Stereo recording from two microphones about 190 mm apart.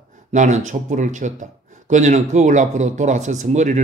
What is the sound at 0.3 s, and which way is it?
Speech, 40° right (ahead or behind).